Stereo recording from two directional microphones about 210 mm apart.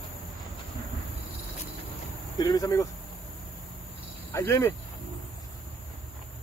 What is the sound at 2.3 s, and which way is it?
Speech, 20° left (ahead or behind).